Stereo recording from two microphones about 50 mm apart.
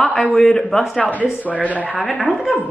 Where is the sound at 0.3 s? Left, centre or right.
Centre.